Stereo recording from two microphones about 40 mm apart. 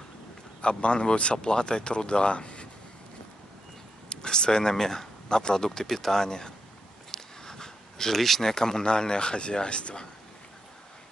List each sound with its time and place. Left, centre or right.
0.6 s speech: left
4.1 s speech: left